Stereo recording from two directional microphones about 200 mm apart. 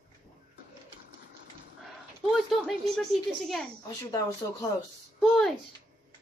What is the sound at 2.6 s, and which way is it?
Speech, centre (ahead or behind).